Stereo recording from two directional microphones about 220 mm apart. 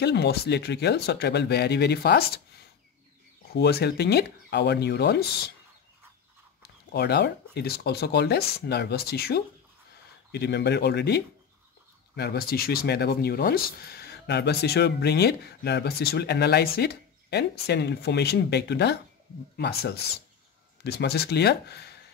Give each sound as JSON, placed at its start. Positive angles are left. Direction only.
{"t": 0.0, "sound": "speech", "side_deg": 50}
{"t": 3.5, "sound": "speech", "side_deg": 50}
{"t": 6.6, "sound": "speech", "side_deg": 45}